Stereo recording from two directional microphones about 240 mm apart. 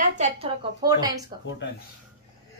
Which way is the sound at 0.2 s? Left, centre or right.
Right.